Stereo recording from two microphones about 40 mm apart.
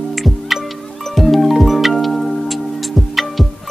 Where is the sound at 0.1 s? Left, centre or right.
Centre.